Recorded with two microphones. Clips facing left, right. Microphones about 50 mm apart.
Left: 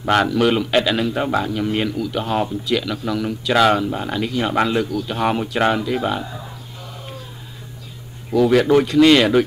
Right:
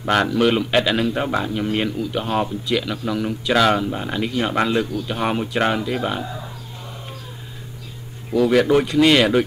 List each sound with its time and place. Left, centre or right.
0.0 s a man's voice: centre
1.9 s a man's voice: centre
2.1 s a man's voice: centre
8.5 s a man's voice: centre